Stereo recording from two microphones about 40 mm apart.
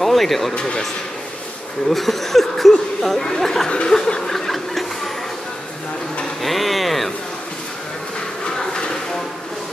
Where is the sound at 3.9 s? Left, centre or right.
Centre.